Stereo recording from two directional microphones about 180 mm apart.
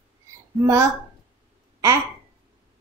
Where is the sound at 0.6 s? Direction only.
15° right (ahead or behind).